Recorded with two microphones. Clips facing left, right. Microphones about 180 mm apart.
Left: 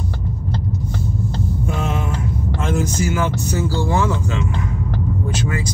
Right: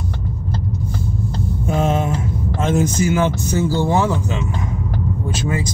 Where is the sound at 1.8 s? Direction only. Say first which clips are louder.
Right 8 dB; 25° right (ahead or behind).